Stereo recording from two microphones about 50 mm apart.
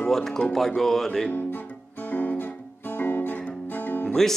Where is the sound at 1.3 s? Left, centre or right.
Left.